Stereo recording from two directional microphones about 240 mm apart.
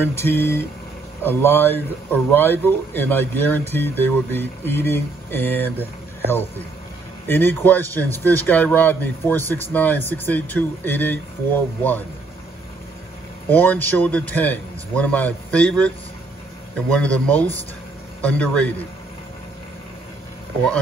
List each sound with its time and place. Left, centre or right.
0.0 s a man's voice: centre
7.2 s a man's voice: centre
13.5 s a man's voice: centre